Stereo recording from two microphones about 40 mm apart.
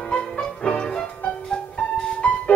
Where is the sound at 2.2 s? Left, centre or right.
Left.